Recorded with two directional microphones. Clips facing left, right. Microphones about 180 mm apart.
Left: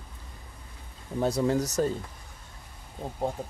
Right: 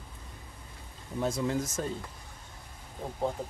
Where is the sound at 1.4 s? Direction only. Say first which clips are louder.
Left 6 dB; 40° left (ahead or behind).